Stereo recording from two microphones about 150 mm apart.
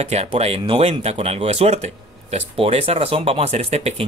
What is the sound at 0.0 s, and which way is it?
Speech, 45° right (ahead or behind).